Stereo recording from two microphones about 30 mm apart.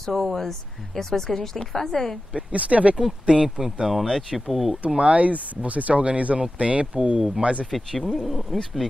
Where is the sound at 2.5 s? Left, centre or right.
Right.